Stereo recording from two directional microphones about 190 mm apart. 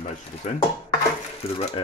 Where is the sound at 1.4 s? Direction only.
30° left (ahead or behind).